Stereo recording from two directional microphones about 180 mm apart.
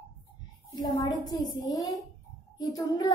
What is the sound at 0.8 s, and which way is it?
A child's voice, 20° left (ahead or behind).